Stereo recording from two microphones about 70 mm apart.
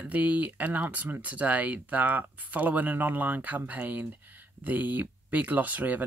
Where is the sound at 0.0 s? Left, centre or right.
Right.